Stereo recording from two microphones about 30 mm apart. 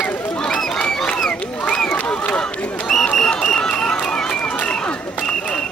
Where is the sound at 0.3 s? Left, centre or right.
Left.